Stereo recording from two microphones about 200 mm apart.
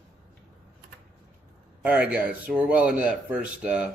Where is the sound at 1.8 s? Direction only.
10° right (ahead or behind).